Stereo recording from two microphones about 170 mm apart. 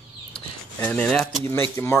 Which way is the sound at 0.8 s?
10° left (ahead or behind).